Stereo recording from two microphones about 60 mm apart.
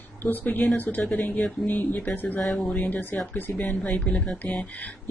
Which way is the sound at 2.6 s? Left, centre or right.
Left.